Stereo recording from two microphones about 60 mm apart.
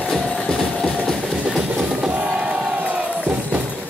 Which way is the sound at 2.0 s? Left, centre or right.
Centre.